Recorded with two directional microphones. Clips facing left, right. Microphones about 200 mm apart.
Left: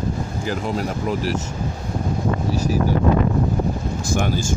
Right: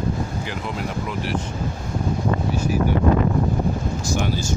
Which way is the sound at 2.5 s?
40° left (ahead or behind).